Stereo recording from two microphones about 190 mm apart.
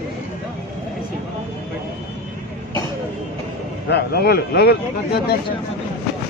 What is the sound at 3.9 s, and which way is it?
A man's voice, 60° left (ahead or behind).